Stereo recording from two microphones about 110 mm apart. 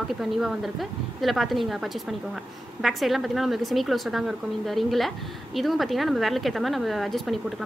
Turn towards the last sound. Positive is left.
turn(degrees=0)  # may be behind; listen again after turning